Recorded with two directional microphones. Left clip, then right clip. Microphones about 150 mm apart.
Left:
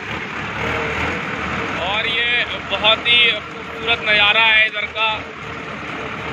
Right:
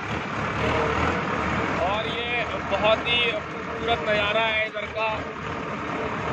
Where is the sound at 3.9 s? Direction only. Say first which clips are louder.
Left 9 dB; 15° right (ahead or behind).